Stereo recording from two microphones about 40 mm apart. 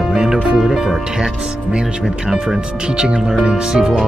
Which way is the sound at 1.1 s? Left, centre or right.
Right.